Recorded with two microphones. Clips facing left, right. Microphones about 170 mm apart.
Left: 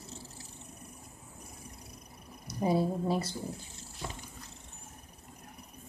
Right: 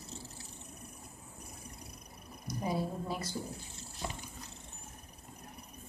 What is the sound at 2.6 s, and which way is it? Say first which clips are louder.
Speech: left 7 dB; 30° left (ahead or behind).